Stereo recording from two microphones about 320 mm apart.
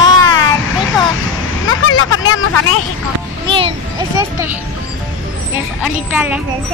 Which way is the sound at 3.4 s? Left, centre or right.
Centre.